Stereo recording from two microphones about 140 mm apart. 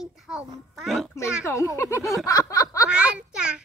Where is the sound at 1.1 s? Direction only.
20° left (ahead or behind).